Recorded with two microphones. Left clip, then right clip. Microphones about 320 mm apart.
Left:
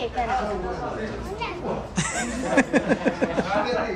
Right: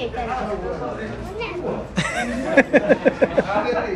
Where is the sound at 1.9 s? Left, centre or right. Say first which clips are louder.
Right 4 dB; centre.